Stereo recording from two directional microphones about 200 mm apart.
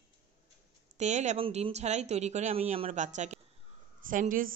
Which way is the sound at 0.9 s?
35° right (ahead or behind).